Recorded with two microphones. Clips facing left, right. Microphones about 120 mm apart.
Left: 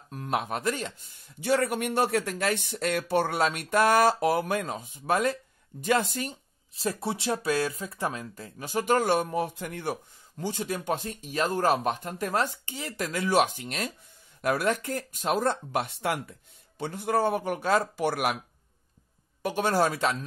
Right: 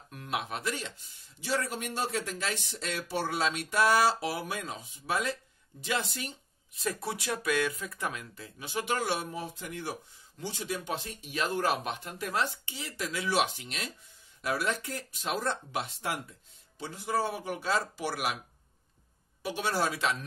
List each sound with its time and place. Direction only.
0.1 s speech: 40° left (ahead or behind)
6.7 s speech: 30° left (ahead or behind); by 18.4 s 55° left (ahead or behind)
19.4 s speech: 50° left (ahead or behind)